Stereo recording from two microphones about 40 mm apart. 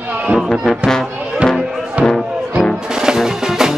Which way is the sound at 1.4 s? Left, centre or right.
Right.